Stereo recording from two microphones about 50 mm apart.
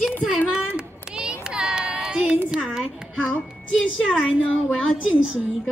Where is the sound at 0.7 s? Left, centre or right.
Centre.